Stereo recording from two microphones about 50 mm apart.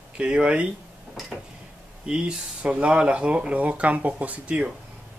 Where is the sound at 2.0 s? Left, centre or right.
Centre.